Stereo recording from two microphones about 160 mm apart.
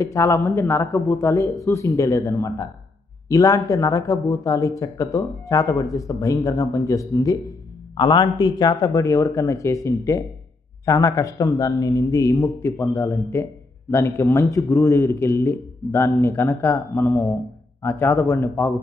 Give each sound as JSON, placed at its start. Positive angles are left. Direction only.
{"t": 0.0, "sound": "a man's voice", "side_deg": 20}
{"t": 10.9, "sound": "a man's voice", "side_deg": 20}